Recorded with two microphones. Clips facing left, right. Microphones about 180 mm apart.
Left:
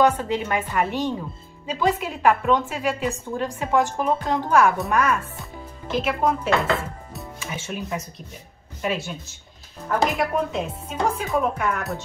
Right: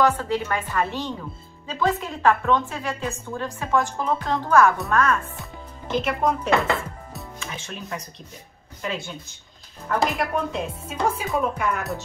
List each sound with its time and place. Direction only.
0.0 s a woman's voice: 20° left (ahead or behind)
9.8 s music: centre (ahead or behind)